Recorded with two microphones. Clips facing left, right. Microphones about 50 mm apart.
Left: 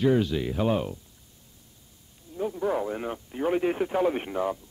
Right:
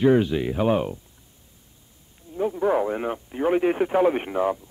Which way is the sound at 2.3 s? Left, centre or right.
Right.